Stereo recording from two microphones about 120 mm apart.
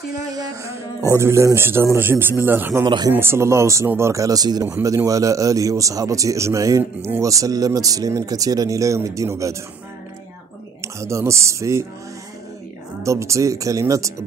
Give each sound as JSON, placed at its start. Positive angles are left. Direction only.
{"t": 0.3, "sound": "speech", "side_deg": -30}
{"t": 2.8, "sound": "speech", "side_deg": -35}
{"t": 3.1, "sound": "speech", "side_deg": -20}
{"t": 10.8, "sound": "speech", "side_deg": -25}
{"t": 13.0, "sound": "speech", "side_deg": -25}